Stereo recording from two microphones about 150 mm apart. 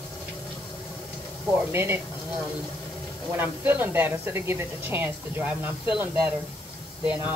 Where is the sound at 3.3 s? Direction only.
15° right (ahead or behind).